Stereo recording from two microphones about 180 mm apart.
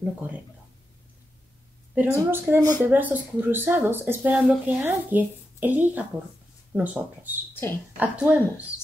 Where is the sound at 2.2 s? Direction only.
15° right (ahead or behind).